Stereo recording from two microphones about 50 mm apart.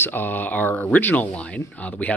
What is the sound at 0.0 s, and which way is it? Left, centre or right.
Speech, left.